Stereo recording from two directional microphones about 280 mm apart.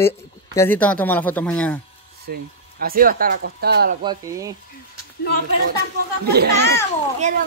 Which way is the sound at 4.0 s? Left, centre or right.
Centre.